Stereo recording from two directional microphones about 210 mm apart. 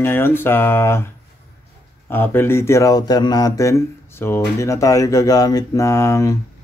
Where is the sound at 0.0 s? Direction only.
10° left (ahead or behind).